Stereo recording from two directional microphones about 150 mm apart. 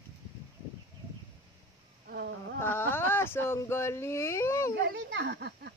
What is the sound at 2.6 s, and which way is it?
Whimper, 15° left (ahead or behind).